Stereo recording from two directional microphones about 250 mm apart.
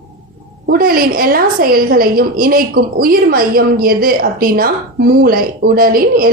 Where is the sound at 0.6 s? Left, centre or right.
Right.